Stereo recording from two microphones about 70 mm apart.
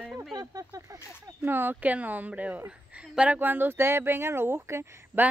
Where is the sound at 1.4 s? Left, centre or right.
Right.